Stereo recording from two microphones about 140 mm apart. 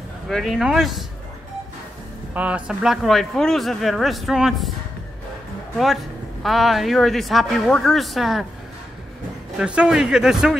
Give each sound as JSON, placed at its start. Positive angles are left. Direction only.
{"t": 0.3, "sound": "a man's voice", "side_deg": 0}
{"t": 2.3, "sound": "a man's voice", "side_deg": -10}
{"t": 5.8, "sound": "a man's voice", "side_deg": 0}
{"t": 9.6, "sound": "a man's voice", "side_deg": -5}